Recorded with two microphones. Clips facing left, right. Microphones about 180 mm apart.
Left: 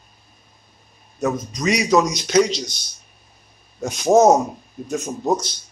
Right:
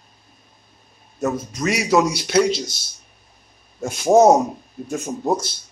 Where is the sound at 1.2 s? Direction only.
5° right (ahead or behind).